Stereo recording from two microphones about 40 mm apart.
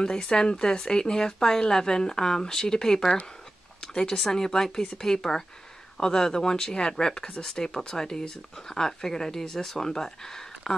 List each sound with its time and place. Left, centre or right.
0.0 s a woman's voice: centre